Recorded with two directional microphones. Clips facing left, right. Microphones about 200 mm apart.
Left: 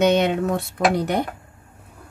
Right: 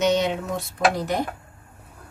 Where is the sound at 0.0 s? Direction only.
60° left (ahead or behind).